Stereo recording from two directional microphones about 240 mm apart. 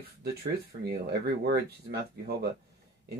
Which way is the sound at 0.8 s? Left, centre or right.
Right.